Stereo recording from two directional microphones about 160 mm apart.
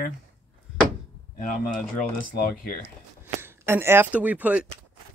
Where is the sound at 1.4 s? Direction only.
55° left (ahead or behind).